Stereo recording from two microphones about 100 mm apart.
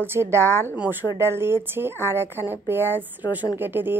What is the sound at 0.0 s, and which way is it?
A woman's voice, 25° right (ahead or behind).